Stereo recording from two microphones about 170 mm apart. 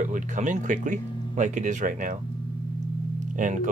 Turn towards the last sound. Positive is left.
turn(degrees=-45)  # may be behind; listen again after turning